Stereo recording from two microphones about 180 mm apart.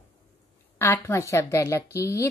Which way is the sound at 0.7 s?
15° left (ahead or behind).